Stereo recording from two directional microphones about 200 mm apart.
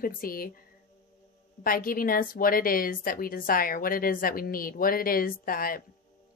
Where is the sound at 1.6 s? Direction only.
45° left (ahead or behind).